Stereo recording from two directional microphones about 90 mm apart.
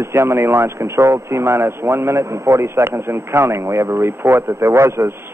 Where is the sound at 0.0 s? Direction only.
30° right (ahead or behind).